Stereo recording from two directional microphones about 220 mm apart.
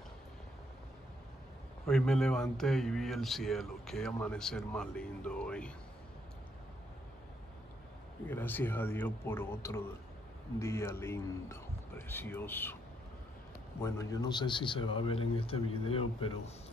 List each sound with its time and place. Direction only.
1.9 s speech: centre (ahead or behind)
8.3 s speech: 10° left (ahead or behind)
13.8 s a man's voice: 15° left (ahead or behind)